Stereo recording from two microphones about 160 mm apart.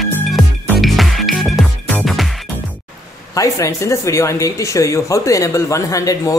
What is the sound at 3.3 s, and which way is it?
Speech, 20° left (ahead or behind).